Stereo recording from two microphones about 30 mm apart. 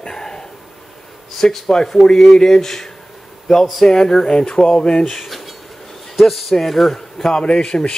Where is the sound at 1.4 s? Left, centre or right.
Left.